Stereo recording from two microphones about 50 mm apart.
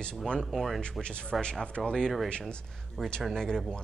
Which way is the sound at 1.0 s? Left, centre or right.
Left.